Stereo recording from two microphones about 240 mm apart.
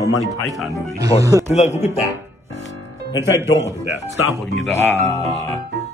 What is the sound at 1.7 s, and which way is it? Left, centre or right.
Speech, centre.